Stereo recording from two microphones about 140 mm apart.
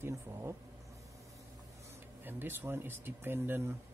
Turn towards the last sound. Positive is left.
turn(degrees=-15)  # may be behind; listen again after turning